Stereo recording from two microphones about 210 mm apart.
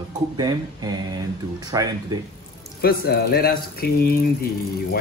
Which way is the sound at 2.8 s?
50° left (ahead or behind).